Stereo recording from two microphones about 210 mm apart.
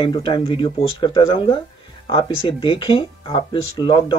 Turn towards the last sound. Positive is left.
turn(degrees=20)  # may be behind; listen again after turning